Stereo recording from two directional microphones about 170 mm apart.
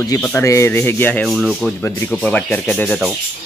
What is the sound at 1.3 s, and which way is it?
Speech, centre (ahead or behind).